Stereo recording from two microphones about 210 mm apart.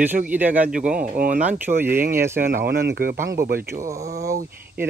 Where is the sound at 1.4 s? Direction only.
10° right (ahead or behind).